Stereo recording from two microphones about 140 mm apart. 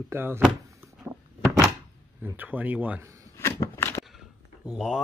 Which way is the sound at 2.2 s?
10° right (ahead or behind).